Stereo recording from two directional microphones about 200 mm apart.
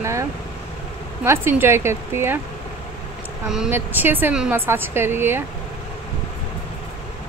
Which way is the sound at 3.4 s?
5° right (ahead or behind).